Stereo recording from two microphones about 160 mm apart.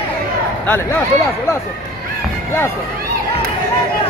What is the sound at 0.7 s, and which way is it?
Speech, 15° left (ahead or behind).